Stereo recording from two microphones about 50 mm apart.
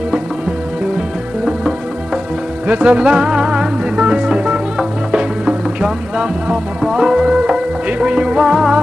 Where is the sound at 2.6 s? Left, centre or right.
Right; by 8.8 s centre.